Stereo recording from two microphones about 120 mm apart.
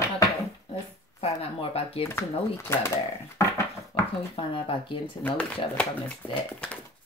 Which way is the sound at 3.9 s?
50° left (ahead or behind).